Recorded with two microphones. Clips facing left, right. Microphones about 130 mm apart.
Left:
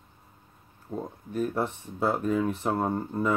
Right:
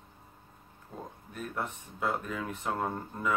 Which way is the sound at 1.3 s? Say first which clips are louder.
Left 9 dB; 30° left (ahead or behind).